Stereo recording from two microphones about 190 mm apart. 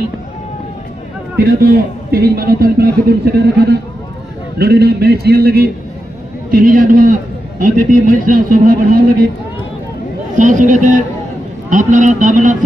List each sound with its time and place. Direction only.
1.4 s a man's voice: 50° right (ahead or behind)
10.3 s a man's voice: 40° right (ahead or behind)